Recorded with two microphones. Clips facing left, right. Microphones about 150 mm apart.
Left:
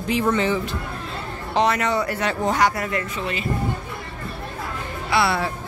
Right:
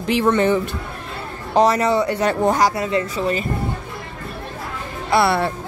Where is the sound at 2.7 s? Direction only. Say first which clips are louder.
Right 5 dB; 25° right (ahead or behind).